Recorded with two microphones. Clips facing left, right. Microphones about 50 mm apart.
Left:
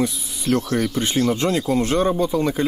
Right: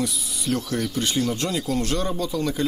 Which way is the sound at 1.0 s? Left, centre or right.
Left.